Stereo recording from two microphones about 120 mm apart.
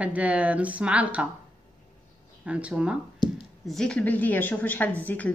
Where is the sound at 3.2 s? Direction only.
35° left (ahead or behind).